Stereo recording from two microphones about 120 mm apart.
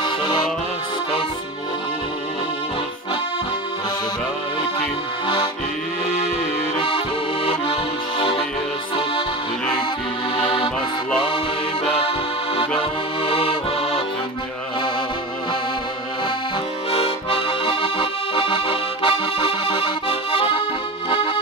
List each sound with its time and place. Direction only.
7.4 s accordion: 50° left (ahead or behind)
12.5 s accordion: 50° left (ahead or behind)
16.9 s accordion: 50° left (ahead or behind)